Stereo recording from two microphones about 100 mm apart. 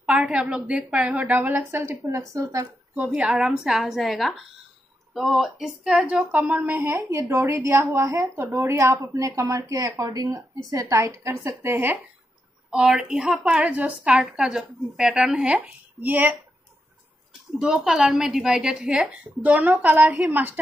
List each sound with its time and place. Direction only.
0.0 s a woman's voice: 5° right (ahead or behind)
1.2 s a woman's voice: 25° right (ahead or behind)
3.1 s a woman's voice: 10° right (ahead or behind)
12.7 s a woman's voice: 5° right (ahead or behind)